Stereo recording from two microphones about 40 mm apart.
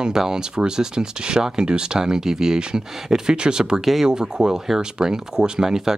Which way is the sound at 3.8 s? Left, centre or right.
Centre.